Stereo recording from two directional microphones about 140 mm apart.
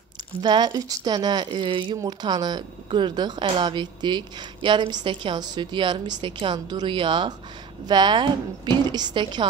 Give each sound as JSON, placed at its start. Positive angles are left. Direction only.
{"t": 0.4, "sound": "speech", "side_deg": -35}